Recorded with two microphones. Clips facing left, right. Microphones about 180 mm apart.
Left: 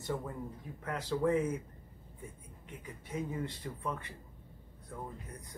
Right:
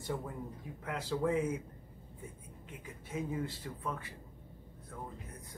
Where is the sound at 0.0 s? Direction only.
10° right (ahead or behind).